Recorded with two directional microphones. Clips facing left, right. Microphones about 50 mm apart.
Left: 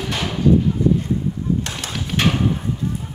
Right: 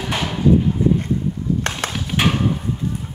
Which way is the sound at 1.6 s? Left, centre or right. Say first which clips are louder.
Right 5 dB; right.